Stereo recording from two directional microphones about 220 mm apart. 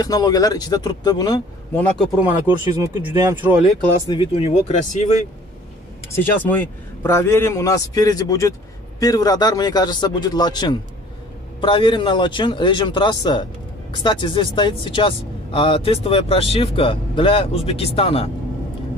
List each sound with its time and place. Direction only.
0.0 s a man's voice: 15° left (ahead or behind)
2.1 s speech: 10° right (ahead or behind)
4.1 s speech: 25° left (ahead or behind)
6.1 s a man's voice: 10° left (ahead or behind); by 18.3 s 25° left (ahead or behind)